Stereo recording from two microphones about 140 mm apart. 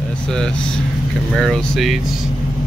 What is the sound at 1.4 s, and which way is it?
Speech, centre (ahead or behind).